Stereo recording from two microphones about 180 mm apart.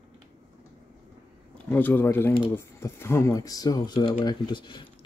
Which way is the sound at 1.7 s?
10° left (ahead or behind).